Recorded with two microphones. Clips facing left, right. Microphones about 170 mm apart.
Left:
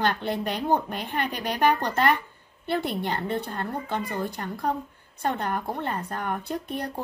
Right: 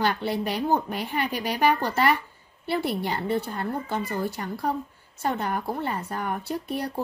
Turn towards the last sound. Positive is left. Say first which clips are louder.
# right 2 dB
turn(degrees=-5)  # may be behind; listen again after turning